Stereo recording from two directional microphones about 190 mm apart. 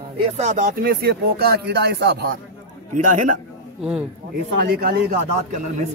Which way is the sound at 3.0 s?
40° right (ahead or behind).